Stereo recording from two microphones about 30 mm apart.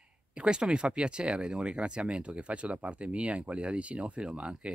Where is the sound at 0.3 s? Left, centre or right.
Right.